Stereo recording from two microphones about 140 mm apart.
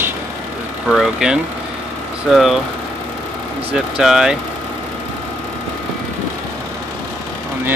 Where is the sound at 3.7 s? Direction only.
5° right (ahead or behind).